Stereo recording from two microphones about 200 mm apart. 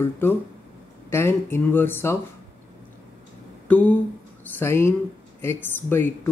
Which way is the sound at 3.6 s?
5° left (ahead or behind).